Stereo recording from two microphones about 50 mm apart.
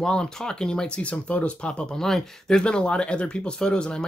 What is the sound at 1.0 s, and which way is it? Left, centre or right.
Speech, left.